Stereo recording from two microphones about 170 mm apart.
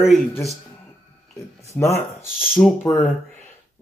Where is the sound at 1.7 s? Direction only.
15° left (ahead or behind).